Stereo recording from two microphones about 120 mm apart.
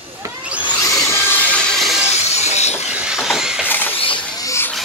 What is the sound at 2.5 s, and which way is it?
Train, 65° left (ahead or behind).